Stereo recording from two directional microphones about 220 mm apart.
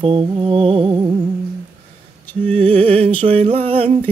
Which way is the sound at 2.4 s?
25° right (ahead or behind).